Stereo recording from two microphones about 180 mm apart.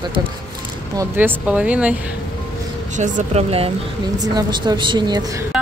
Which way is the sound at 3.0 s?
40° right (ahead or behind).